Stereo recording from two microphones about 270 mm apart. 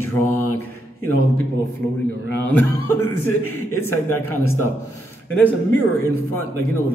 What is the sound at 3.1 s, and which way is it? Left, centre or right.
Speech, left.